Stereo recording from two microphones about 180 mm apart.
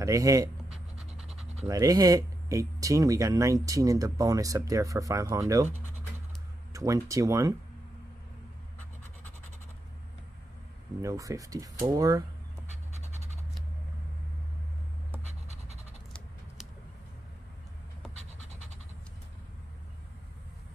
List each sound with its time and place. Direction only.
0.0 s speech: 20° right (ahead or behind)
1.7 s speech: 20° right (ahead or behind)
6.7 s speech: 20° right (ahead or behind)
11.0 s speech: 15° right (ahead or behind)
15.4 s scratch: 40° right (ahead or behind)